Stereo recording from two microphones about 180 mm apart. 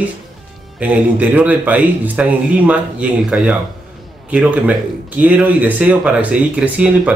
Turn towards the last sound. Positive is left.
turn(degrees=-5)  # may be behind; listen again after turning